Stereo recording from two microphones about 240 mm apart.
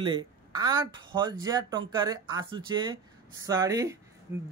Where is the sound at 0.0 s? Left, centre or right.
Centre.